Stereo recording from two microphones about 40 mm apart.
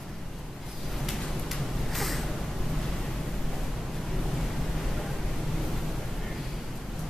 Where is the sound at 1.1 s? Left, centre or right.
Centre.